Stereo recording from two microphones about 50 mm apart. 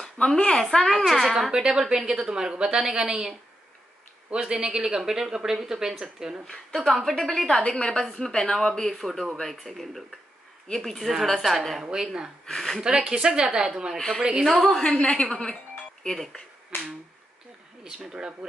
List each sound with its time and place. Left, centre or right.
0.0 s speech: centre
0.8 s a woman's voice: centre
1.5 s speech: centre
4.4 s speech: centre
6.4 s a woman's voice: centre
11.8 s speech: centre
12.4 s a woman's voice: centre
12.8 s speech: centre
13.9 s a woman's voice: centre
14.8 s a woman's voice: left
16.7 s speech: left
17.8 s speech: centre